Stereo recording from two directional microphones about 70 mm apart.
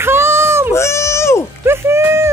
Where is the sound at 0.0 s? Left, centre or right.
Right.